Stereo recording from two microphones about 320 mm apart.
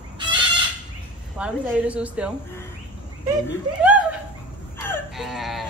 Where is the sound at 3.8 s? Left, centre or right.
Centre.